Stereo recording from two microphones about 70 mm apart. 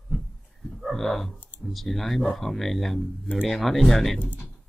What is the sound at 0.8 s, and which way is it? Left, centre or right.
Speech, centre.